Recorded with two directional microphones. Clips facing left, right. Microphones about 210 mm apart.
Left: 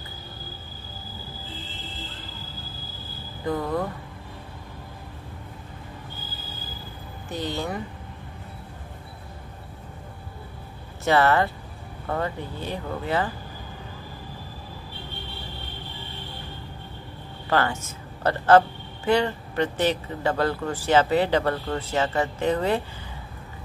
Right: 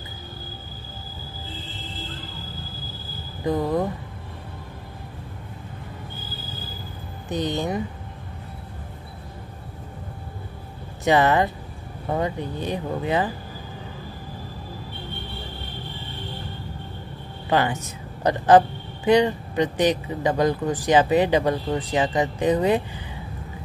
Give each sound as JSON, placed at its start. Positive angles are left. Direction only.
{"t": 3.4, "sound": "speech", "side_deg": -20}
{"t": 7.2, "sound": "speech", "side_deg": -20}
{"t": 11.1, "sound": "speech", "side_deg": -20}
{"t": 17.5, "sound": "a woman's voice", "side_deg": -20}